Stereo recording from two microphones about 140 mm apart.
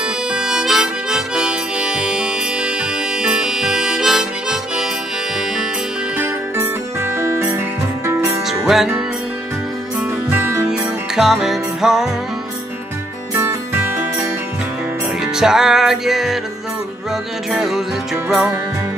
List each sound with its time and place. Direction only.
0.0 s harmonica: 5° right (ahead or behind)
6.1 s music: 15° right (ahead or behind)
8.2 s music: centre (ahead or behind)
10.7 s music: 5° right (ahead or behind)
13.3 s music: 15° right (ahead or behind)
15.1 s music: 5° right (ahead or behind)